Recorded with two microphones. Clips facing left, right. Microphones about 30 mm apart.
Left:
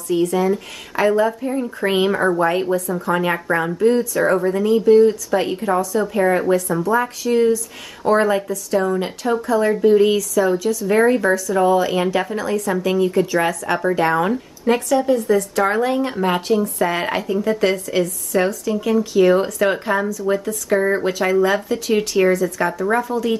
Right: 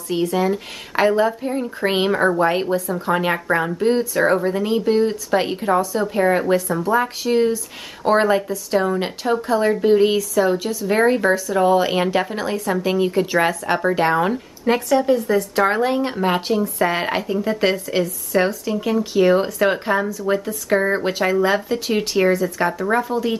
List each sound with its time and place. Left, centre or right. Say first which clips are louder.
0.2 s speech: even; centre
3.3 s speech: even; centre
3.7 s speech: left 2 dB; right
4.6 s a woman's voice: left 8 dB; right; by 20.1 s centre
20.1 s speech: left 1 dB; centre